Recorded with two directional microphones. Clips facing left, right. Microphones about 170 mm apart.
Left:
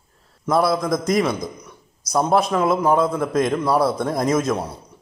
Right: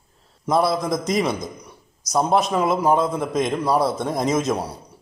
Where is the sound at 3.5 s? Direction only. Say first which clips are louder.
Left 1 dB; 15° right (ahead or behind).